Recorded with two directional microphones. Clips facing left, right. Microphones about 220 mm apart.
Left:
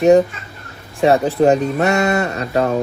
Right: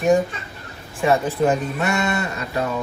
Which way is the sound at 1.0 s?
40° left (ahead or behind).